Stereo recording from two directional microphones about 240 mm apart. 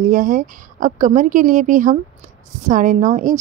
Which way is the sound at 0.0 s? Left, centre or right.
Right.